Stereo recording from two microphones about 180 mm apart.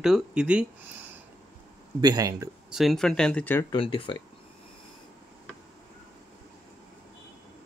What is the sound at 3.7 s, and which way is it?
Speech, 25° left (ahead or behind).